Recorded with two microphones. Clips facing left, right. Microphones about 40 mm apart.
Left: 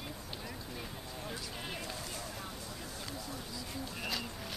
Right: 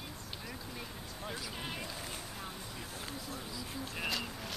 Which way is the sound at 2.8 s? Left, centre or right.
Right.